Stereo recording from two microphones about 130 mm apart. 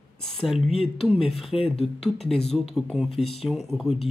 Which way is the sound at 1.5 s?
45° left (ahead or behind).